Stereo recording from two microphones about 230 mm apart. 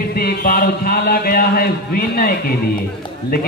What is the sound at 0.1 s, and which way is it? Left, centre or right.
Speech, left.